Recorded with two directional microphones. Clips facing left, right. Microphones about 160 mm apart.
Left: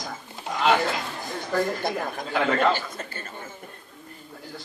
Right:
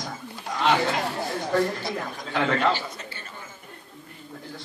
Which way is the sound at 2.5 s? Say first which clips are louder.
Left 1 dB; 50° left (ahead or behind).